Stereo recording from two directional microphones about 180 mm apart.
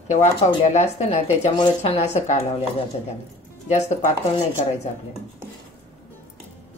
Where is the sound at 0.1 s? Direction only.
40° left (ahead or behind).